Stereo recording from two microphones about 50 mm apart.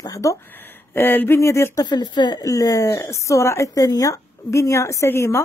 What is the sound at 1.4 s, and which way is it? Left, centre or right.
Speech, left.